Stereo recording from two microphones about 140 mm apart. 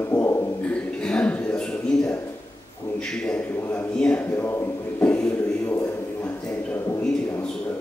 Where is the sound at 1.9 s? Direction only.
5° left (ahead or behind).